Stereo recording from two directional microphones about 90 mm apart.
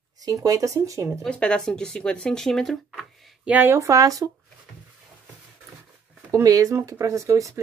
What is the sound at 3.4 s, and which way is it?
Speech, 20° right (ahead or behind).